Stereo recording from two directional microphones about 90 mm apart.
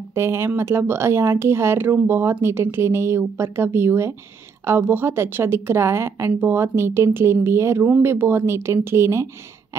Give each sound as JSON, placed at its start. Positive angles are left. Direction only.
{"t": 0.1, "sound": "a woman's voice", "side_deg": -25}